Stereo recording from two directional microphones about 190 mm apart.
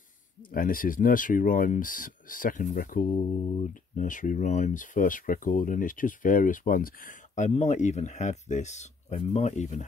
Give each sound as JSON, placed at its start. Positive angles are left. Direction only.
{"t": 0.4, "sound": "speech", "side_deg": 50}